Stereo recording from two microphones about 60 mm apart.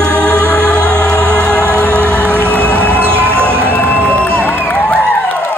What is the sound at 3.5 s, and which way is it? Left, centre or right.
Music, right.